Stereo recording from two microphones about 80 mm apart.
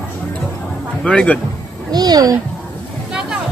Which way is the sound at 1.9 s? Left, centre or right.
Right.